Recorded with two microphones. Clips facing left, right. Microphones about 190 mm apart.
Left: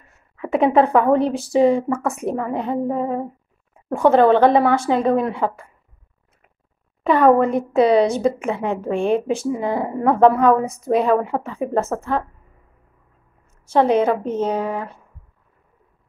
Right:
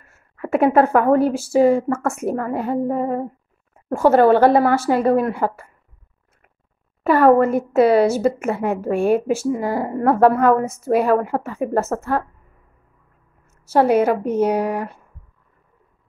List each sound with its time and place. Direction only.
0.1 s speech: 5° right (ahead or behind)
7.0 s speech: 5° right (ahead or behind)
13.5 s speech: 5° right (ahead or behind)